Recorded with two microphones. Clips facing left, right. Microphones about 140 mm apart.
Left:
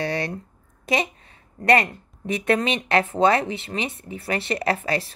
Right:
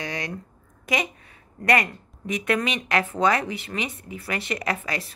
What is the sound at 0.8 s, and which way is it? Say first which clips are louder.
A woman's voice: left 3 dB; 30° left (ahead or behind).